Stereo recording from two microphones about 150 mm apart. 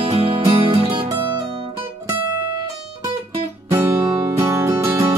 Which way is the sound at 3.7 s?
15° right (ahead or behind).